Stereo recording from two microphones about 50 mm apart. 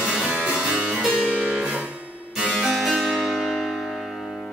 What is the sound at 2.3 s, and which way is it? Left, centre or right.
Harpsichord, centre.